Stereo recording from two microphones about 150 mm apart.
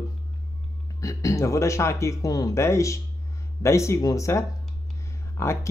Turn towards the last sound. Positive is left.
turn(degrees=20)  # may be behind; listen again after turning